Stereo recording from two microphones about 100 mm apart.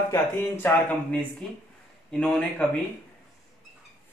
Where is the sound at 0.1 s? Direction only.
20° left (ahead or behind).